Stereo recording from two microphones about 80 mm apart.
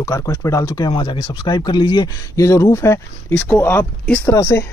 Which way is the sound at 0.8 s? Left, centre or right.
Left.